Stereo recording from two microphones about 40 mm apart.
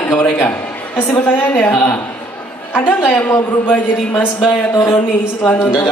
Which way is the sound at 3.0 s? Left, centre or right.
Left.